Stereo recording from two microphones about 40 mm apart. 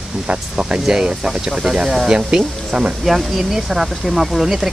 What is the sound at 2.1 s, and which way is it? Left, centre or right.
Speech, right.